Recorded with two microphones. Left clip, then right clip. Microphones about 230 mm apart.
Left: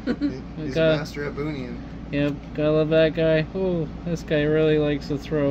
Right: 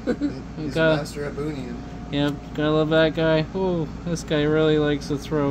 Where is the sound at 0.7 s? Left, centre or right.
Centre.